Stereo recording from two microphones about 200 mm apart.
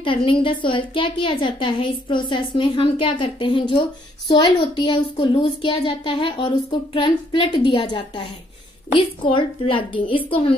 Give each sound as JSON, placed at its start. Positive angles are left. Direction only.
{"t": 0.0, "sound": "a child's voice", "side_deg": 25}